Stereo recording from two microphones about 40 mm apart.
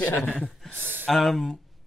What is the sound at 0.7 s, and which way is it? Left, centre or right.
Speech, right.